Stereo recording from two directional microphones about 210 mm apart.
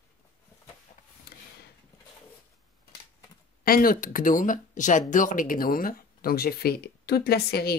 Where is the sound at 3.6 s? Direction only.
45° left (ahead or behind).